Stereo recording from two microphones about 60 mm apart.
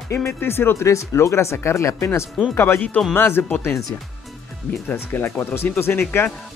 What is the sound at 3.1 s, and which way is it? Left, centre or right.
Speech, left.